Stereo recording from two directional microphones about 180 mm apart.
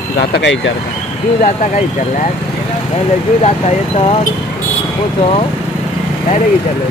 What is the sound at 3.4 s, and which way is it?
Speech, 35° left (ahead or behind).